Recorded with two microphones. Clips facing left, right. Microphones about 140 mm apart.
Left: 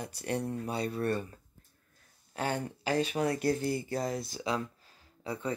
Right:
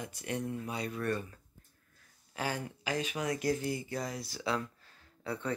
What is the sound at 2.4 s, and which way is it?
Speech, 30° left (ahead or behind).